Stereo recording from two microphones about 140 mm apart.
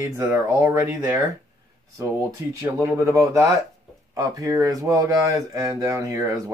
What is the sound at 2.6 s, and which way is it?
Speech, 20° right (ahead or behind).